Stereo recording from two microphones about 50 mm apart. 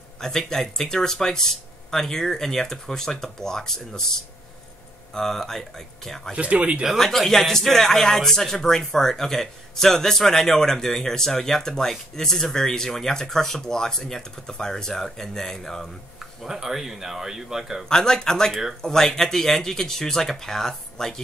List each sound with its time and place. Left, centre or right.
0.2 s a man's voice: centre
5.1 s a man's voice: centre
6.3 s speech: right
7.0 s a man's voice: centre
16.2 s speech: centre
17.8 s a man's voice: centre
18.5 s speech: centre
18.8 s a man's voice: centre